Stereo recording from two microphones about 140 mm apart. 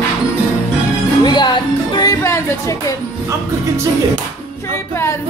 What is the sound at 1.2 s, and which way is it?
Music, 30° left (ahead or behind).